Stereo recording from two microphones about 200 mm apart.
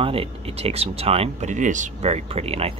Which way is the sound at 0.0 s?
30° right (ahead or behind).